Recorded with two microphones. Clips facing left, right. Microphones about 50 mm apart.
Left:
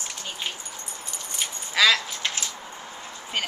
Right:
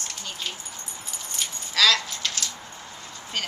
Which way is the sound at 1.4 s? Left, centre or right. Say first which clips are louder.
Left 1 dB; centre.